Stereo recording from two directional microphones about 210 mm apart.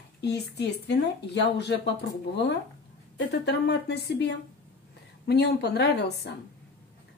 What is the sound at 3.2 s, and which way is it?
A woman's voice, 50° left (ahead or behind).